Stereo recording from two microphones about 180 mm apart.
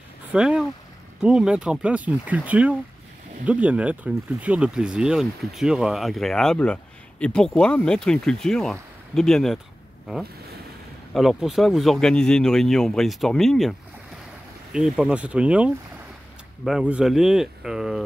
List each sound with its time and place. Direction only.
0.3 s speech: 5° right (ahead or behind)
11.1 s speech: centre (ahead or behind)